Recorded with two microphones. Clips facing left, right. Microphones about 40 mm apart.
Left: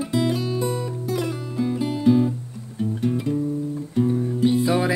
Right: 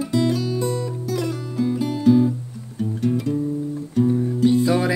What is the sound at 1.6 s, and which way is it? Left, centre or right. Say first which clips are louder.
Music: right 2 dB; centre.